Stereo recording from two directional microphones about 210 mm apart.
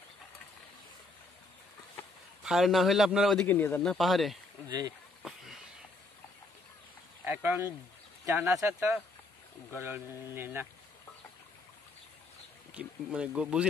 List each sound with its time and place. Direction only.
2.4 s a man's voice: centre (ahead or behind)
4.6 s speech: 20° right (ahead or behind)
5.2 s a sound: centre (ahead or behind)
7.2 s speech: 10° right (ahead or behind)
12.7 s speech: 5° right (ahead or behind)